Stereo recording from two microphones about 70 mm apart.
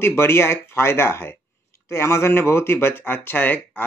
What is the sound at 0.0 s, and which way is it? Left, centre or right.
A man's voice, left.